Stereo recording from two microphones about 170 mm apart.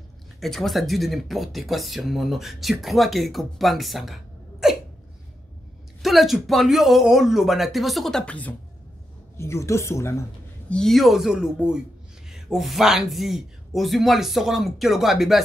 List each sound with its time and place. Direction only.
0.4 s speech: centre (ahead or behind)
6.0 s speech: centre (ahead or behind); by 10.2 s 15° left (ahead or behind)
10.7 s speech: centre (ahead or behind)